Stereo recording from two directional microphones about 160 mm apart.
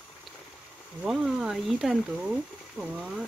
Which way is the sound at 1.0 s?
Centre (ahead or behind).